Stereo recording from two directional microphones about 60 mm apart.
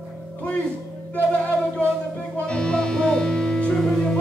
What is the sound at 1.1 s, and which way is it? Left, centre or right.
Music, left.